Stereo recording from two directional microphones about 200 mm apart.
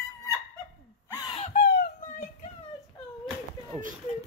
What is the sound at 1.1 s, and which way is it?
Wail, 25° left (ahead or behind).